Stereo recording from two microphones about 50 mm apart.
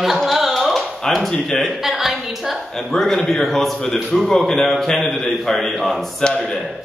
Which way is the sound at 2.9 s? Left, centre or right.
Centre.